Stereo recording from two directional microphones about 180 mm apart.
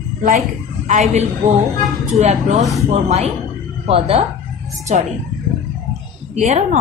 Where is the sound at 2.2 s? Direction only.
40° right (ahead or behind).